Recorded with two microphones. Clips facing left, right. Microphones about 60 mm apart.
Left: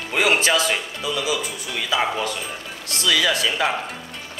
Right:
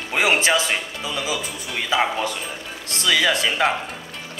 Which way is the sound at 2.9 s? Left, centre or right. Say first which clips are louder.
Right 1 dB; right.